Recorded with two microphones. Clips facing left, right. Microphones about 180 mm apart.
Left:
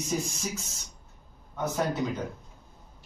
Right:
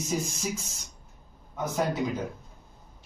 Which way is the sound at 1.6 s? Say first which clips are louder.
Even; 10° right (ahead or behind).